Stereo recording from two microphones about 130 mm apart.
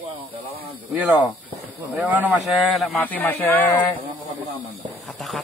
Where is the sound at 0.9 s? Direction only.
10° right (ahead or behind).